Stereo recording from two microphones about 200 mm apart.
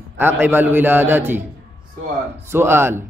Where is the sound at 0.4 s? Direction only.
10° right (ahead or behind).